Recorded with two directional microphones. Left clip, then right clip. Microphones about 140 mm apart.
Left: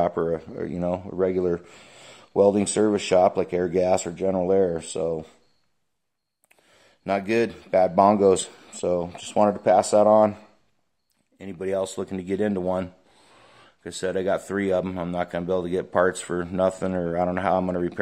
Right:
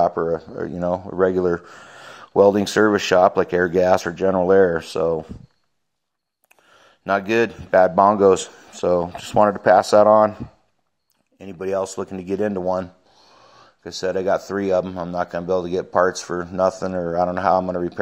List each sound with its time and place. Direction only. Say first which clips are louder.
0.1 s speech: right 3 dB; 15° left (ahead or behind); by 5.1 s 5° right (ahead or behind)
7.1 s speech: right 4 dB; centre (ahead or behind)
8.8 s speech: right 6 dB; 10° right (ahead or behind)
11.3 s speech: right 3 dB; 5° left (ahead or behind)
12.1 s a sound: right 3 dB; 10° left (ahead or behind)
13.9 s speech: right 4 dB; 5° left (ahead or behind)
15.1 s speech: right 4 dB; 5° left (ahead or behind)
17.6 s speech: right 3 dB; 15° left (ahead or behind)